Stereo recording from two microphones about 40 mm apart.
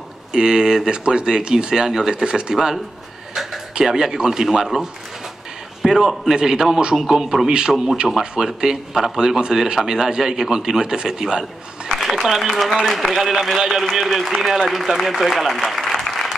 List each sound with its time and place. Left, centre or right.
0.3 s speech: centre
3.7 s a man's voice: centre
5.8 s a man's voice: centre
6.3 s a man's voice: centre
12.0 s a man's voice: centre